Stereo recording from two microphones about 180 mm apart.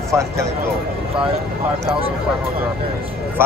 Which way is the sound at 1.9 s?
30° right (ahead or behind).